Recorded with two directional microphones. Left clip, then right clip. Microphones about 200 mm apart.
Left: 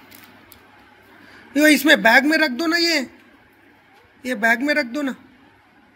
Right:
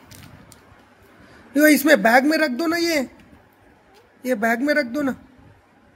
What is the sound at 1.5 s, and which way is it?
A man's voice, 30° right (ahead or behind).